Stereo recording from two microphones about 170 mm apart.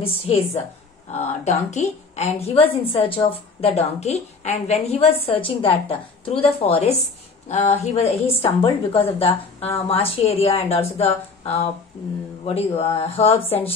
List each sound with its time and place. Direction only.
0.0 s a woman's voice: 35° left (ahead or behind)